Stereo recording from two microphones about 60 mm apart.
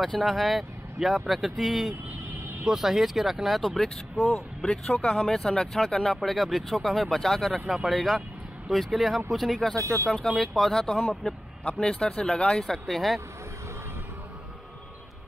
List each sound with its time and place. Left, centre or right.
0.0 s speech: centre
9.8 s speech: right
10.1 s speech: centre